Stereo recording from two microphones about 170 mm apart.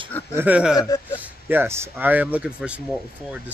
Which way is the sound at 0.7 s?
20° left (ahead or behind).